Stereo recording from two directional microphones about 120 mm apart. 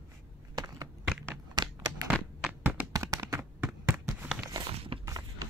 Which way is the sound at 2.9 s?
30° right (ahead or behind).